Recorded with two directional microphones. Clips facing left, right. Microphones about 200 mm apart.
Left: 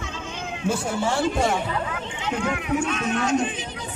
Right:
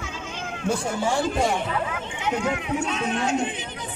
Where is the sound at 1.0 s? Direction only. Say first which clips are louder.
Left 1 dB; 10° right (ahead or behind).